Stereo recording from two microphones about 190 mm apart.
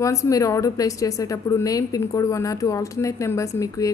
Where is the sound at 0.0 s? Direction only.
15° left (ahead or behind).